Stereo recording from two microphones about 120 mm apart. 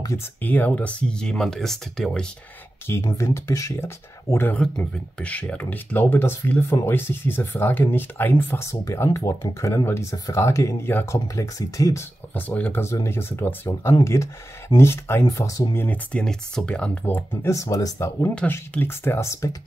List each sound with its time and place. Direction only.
0.4 s speech: 15° left (ahead or behind)
3.2 s speech: 25° left (ahead or behind)
4.6 s speech: 10° left (ahead or behind); by 15.8 s 30° left (ahead or behind)
15.8 s speech: 10° left (ahead or behind)